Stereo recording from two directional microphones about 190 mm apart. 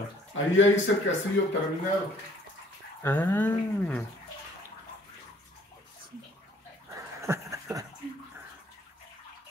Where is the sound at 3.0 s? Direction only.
10° left (ahead or behind).